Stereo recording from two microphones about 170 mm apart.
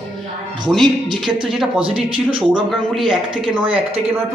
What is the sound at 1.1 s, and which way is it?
A woman's voice, centre (ahead or behind).